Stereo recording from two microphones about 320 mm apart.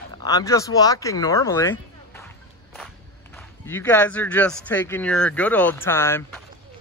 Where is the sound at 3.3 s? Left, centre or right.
Centre.